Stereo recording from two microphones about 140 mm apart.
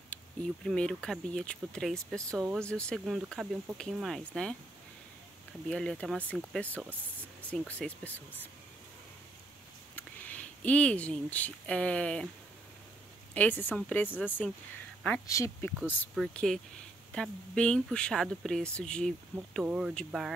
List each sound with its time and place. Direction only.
0.1 s speech: 10° left (ahead or behind)
5.7 s speech: 5° left (ahead or behind)
9.9 s speech: 10° left (ahead or behind)
13.3 s speech: 10° left (ahead or behind)
16.2 s speech: centre (ahead or behind)
19.6 s speech: 10° right (ahead or behind)